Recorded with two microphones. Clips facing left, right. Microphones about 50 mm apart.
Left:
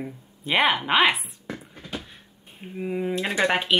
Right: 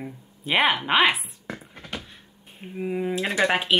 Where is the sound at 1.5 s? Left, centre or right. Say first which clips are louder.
Left 1 dB; right.